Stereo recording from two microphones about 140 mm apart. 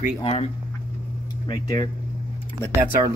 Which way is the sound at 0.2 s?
45° left (ahead or behind).